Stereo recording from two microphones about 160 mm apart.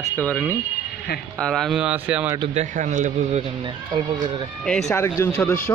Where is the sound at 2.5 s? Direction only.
45° right (ahead or behind).